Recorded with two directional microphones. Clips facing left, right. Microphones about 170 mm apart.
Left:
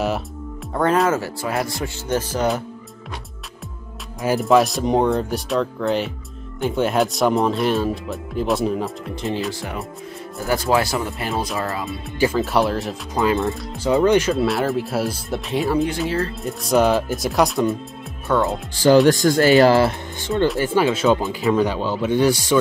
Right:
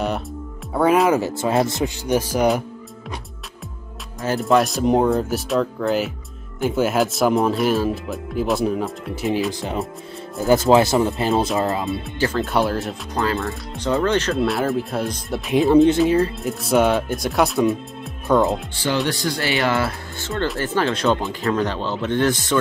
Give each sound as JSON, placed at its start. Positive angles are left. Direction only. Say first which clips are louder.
{"t": 0.7, "sound": "speech", "louder": "right 2 dB", "side_deg": -10}
{"t": 4.4, "sound": "speech", "louder": "left 1 dB", "side_deg": 0}
{"t": 12.4, "sound": "speech", "louder": "left 1 dB", "side_deg": 0}
{"t": 13.2, "sound": "speech", "louder": "left 4 dB", "side_deg": 20}
{"t": 14.3, "sound": "speech", "louder": "even", "side_deg": 0}
{"t": 15.5, "sound": "speech", "louder": "right 7 dB", "side_deg": -20}
{"t": 16.4, "sound": "speech", "louder": "left 5 dB", "side_deg": 0}
{"t": 18.3, "sound": "speech", "louder": "right 3 dB", "side_deg": -20}
{"t": 19.0, "sound": "speech", "louder": "left 9 dB", "side_deg": 45}
{"t": 20.2, "sound": "speech", "louder": "left 5 dB", "side_deg": 15}